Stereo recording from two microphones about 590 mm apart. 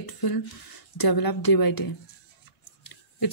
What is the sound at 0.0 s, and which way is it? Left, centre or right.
Speech, left.